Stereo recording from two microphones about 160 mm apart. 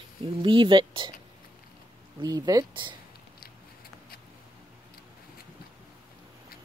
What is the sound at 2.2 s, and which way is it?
Speech, 25° right (ahead or behind).